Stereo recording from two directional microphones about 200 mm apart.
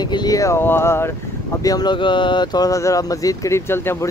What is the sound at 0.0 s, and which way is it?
Speech, 20° left (ahead or behind).